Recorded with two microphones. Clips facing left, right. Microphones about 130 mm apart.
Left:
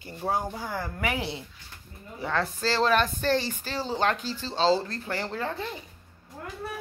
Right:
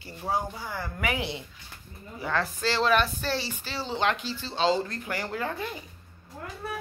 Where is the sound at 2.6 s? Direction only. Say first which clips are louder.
Left 1 dB; 40° left (ahead or behind).